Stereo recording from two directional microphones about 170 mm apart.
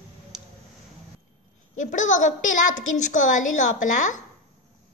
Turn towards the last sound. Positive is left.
turn(degrees=50)  # may be behind; listen again after turning